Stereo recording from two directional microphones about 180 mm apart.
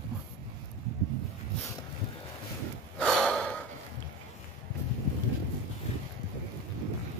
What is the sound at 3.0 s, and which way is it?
Gasp, 5° left (ahead or behind).